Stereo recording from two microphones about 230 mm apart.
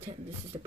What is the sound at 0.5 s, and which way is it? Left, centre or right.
Speech, right.